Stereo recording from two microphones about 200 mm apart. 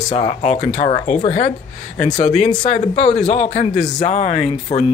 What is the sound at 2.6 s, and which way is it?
A man's voice, 35° left (ahead or behind).